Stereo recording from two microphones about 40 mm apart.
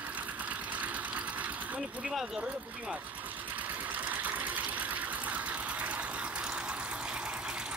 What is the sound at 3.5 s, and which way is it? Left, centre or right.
Sewing machine, right.